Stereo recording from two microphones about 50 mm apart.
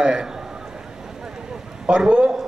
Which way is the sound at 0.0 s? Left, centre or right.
Centre.